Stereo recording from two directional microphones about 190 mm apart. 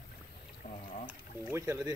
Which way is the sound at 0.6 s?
35° left (ahead or behind).